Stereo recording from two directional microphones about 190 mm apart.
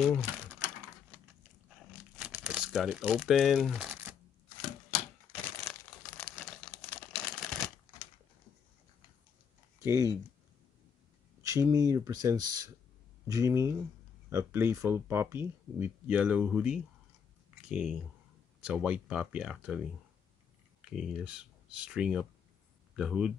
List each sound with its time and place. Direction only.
2.1 s crumpling: 5° right (ahead or behind)
5.7 s crumpling: 5° left (ahead or behind)
9.8 s speech: 15° right (ahead or behind)
11.4 s speech: 20° right (ahead or behind)
20.8 s speech: centre (ahead or behind)